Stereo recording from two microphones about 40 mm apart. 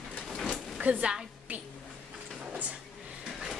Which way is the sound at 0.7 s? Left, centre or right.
Right.